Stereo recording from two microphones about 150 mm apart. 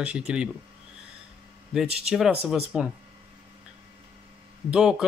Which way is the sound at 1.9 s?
5° right (ahead or behind).